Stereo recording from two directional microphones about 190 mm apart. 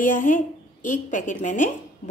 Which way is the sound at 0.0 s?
45° left (ahead or behind).